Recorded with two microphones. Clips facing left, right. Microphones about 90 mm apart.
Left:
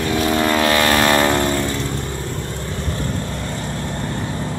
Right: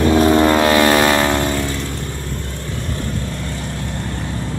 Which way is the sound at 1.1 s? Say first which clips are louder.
Even; centre (ahead or behind).